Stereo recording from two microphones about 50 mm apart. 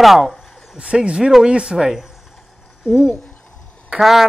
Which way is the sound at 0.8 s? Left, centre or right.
Right.